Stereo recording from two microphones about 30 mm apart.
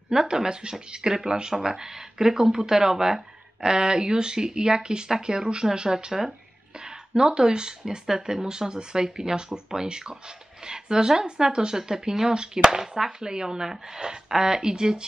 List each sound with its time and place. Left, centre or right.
0.1 s speech: centre
3.7 s speech: right